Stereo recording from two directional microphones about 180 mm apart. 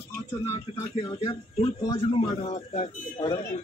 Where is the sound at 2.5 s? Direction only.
40° left (ahead or behind).